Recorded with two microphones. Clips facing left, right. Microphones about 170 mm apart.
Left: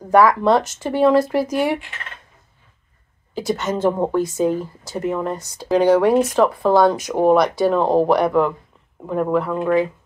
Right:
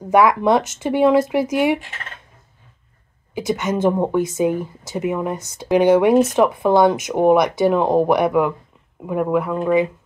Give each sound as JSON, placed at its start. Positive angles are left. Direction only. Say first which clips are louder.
{"t": 0.1, "sound": "speech", "louder": "even", "side_deg": -15}
{"t": 3.3, "sound": "speech", "louder": "right 1 dB", "side_deg": -15}